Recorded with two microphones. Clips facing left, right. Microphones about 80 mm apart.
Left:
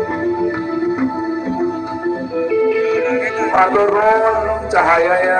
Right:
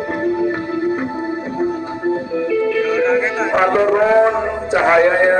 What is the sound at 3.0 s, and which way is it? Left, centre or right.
Music, centre.